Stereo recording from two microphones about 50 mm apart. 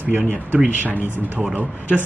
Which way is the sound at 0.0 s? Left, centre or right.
Right.